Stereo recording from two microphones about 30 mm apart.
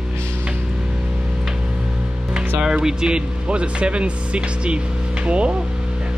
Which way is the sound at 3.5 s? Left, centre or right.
Right.